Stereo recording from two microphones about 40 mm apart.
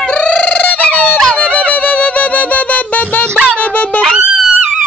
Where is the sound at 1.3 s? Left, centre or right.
Left.